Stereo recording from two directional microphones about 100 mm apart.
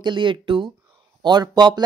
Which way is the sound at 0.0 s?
55° right (ahead or behind).